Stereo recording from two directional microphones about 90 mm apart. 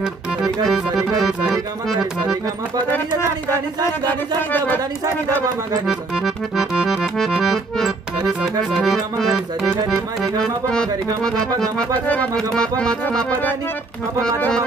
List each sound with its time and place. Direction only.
0.0 s accordion: 5° right (ahead or behind)
4.4 s speech: 20° left (ahead or behind)
5.9 s accordion: 5° right (ahead or behind)
8.2 s music: 10° right (ahead or behind)
8.7 s accordion: centre (ahead or behind)
12.5 s accordion: 10° left (ahead or behind)